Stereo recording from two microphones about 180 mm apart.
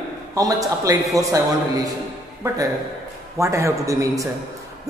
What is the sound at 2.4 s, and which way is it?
A man's voice, 20° right (ahead or behind).